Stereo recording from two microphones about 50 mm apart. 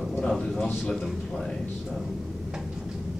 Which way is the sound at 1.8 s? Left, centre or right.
Centre.